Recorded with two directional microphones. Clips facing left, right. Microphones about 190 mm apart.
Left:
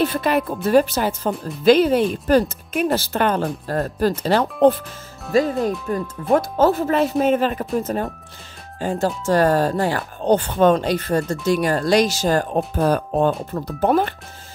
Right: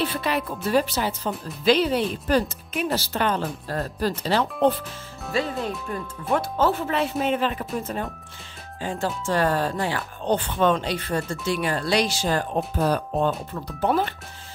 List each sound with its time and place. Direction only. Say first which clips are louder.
0.0 s speech: left 6 dB; 50° left (ahead or behind)